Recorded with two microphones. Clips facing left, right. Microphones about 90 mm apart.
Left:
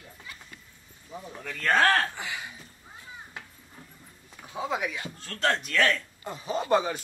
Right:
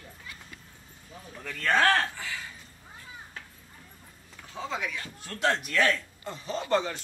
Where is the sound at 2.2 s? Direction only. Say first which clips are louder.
Left 2 dB; 20° left (ahead or behind).